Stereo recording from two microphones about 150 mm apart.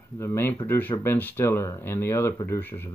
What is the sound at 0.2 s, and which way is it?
Speech, 15° left (ahead or behind).